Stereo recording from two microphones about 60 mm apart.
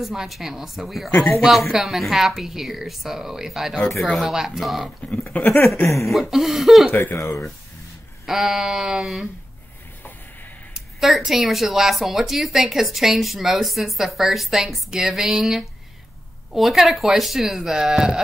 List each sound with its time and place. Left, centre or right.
0.0 s speech: centre
5.3 s speech: left
6.0 s speech: centre
6.9 s speech: left
8.3 s a sound: centre
11.0 s speech: centre